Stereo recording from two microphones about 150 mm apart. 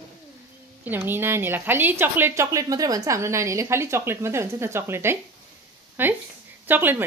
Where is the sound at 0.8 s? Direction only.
15° right (ahead or behind).